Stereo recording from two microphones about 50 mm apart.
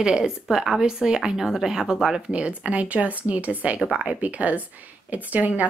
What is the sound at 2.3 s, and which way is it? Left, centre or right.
Speech, right.